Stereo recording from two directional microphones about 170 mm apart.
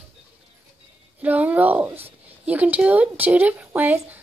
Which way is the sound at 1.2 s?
10° right (ahead or behind).